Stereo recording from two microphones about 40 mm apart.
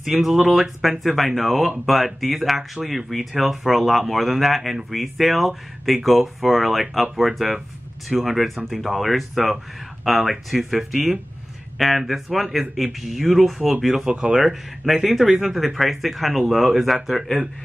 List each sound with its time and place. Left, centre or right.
0.0 s speech: centre
14.0 s speech: right
14.4 s speech: centre